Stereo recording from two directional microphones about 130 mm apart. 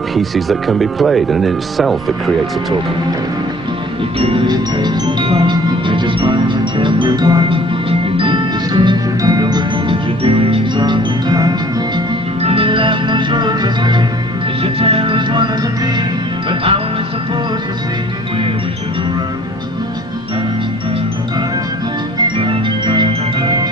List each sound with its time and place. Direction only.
0.1 s speech: centre (ahead or behind)
4.2 s music: 40° right (ahead or behind)
10.2 s music: 45° right (ahead or behind)
12.4 s music: 45° right (ahead or behind)
14.6 s music: 45° right (ahead or behind)
22.4 s music: 40° right (ahead or behind)